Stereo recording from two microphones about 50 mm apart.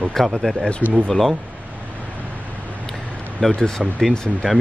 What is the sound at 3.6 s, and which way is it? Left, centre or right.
Speech, centre.